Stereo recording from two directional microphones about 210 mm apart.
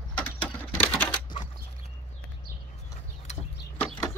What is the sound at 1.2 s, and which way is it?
Typing, 20° left (ahead or behind).